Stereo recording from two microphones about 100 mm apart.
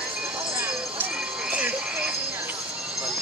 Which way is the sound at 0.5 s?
20° right (ahead or behind).